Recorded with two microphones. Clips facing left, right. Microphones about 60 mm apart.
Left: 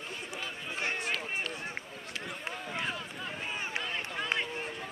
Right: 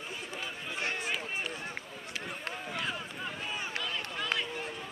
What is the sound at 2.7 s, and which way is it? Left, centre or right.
Run, centre.